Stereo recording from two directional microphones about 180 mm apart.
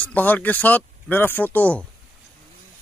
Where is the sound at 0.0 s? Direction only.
10° left (ahead or behind).